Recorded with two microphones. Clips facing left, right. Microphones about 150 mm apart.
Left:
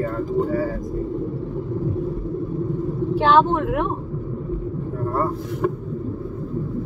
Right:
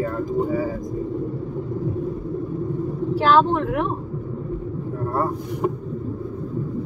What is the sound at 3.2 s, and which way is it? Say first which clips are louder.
Speech: even; 20° left (ahead or behind).